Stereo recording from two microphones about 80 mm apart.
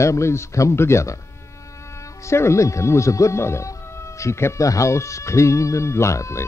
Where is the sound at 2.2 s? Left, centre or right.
Left.